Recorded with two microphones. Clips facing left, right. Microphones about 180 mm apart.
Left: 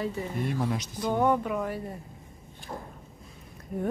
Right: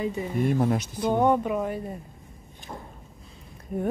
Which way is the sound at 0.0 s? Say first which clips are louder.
Right 3 dB; 20° right (ahead or behind).